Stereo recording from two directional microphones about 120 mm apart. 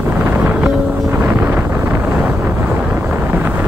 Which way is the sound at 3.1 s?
15° right (ahead or behind).